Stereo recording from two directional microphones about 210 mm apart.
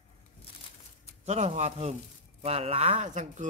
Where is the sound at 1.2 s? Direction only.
30° right (ahead or behind).